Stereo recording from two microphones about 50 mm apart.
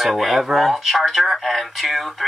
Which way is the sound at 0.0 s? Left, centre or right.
Centre.